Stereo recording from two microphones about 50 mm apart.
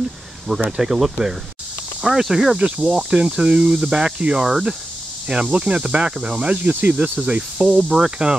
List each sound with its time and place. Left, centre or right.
0.7 s speech: centre